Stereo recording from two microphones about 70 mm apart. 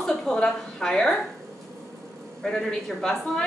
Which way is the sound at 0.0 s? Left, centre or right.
Centre.